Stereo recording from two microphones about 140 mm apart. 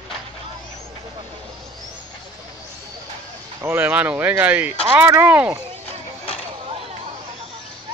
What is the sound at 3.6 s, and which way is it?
Speech, 15° right (ahead or behind).